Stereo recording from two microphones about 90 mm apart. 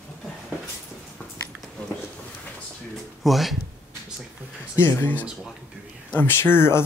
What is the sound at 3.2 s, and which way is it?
Speech, centre (ahead or behind).